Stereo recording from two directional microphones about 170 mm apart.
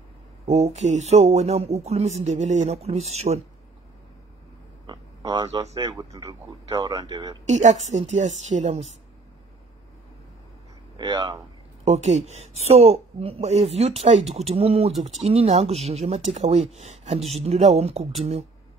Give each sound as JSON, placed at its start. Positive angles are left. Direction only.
{"t": 0.5, "sound": "speech", "side_deg": -40}
{"t": 4.8, "sound": "a sound", "side_deg": -25}
{"t": 5.8, "sound": "speech", "side_deg": -25}
{"t": 7.4, "sound": "speech", "side_deg": -40}
{"t": 11.0, "sound": "speech", "side_deg": -25}
{"t": 11.8, "sound": "speech", "side_deg": -40}